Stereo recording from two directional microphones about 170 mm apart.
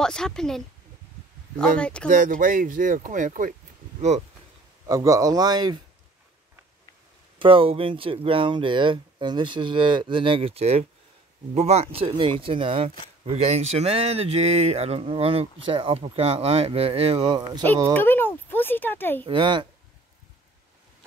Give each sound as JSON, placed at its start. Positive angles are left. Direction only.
{"t": 0.0, "sound": "a woman's voice", "side_deg": 5}
{"t": 2.0, "sound": "speech", "side_deg": -50}
{"t": 4.8, "sound": "speech", "side_deg": -20}
{"t": 7.3, "sound": "speech", "side_deg": -30}
{"t": 17.9, "sound": "a sound", "side_deg": 10}
{"t": 19.2, "sound": "speech", "side_deg": -30}